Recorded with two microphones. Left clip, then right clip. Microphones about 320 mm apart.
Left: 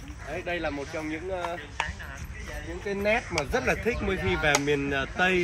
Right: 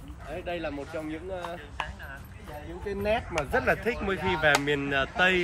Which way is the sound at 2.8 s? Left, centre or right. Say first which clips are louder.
Left 2 dB; centre.